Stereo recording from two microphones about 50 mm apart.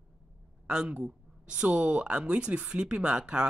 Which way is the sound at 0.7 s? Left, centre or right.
Right.